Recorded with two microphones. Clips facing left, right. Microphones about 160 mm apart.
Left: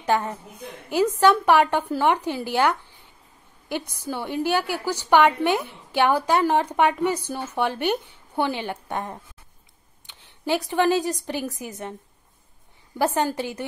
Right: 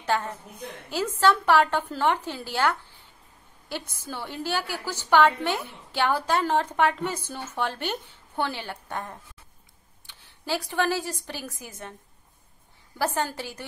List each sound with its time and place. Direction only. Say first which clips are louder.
0.0 s a woman's voice: left 4 dB; 15° left (ahead or behind)
12.9 s a woman's voice: left 5 dB; 20° left (ahead or behind)